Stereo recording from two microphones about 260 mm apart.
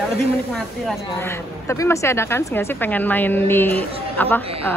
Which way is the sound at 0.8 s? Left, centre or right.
Centre.